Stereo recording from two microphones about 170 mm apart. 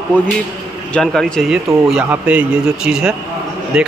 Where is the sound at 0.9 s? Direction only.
5° left (ahead or behind).